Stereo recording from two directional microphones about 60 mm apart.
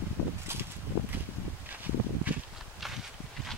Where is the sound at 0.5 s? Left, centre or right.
Right.